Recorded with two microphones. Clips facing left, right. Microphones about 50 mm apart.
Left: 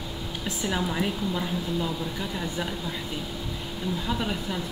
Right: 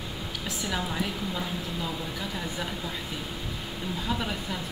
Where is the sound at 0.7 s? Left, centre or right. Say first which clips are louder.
Left 4 dB; centre.